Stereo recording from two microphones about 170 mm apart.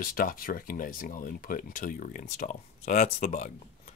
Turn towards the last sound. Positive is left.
turn(degrees=50)  # may be behind; listen again after turning